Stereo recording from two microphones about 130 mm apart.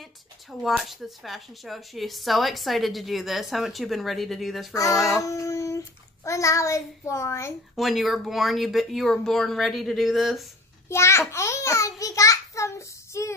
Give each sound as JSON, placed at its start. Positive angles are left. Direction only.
{"t": 0.0, "sound": "speech", "side_deg": 0}
{"t": 4.7, "sound": "child singing", "side_deg": 25}
{"t": 7.7, "sound": "speech", "side_deg": 0}
{"t": 10.9, "sound": "a sound", "side_deg": 20}